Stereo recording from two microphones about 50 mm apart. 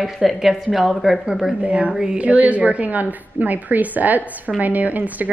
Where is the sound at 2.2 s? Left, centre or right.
Right.